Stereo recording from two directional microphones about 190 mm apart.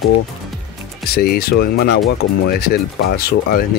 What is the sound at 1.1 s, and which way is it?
Speech, 55° left (ahead or behind).